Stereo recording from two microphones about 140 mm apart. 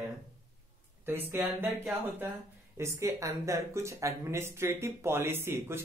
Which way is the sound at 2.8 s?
20° right (ahead or behind).